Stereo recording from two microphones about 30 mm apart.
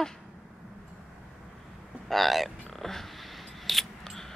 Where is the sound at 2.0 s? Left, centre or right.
Centre.